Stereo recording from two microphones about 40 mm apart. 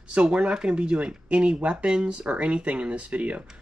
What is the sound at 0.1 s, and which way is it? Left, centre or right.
Speech, right.